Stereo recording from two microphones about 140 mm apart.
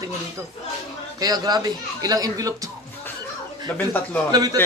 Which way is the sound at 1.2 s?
30° right (ahead or behind).